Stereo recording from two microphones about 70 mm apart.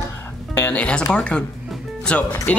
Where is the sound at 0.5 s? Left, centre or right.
Left.